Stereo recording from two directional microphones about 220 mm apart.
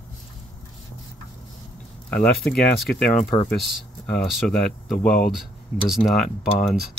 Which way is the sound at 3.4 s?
Centre (ahead or behind).